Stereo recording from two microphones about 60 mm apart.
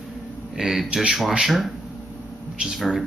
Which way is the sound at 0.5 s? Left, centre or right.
Centre.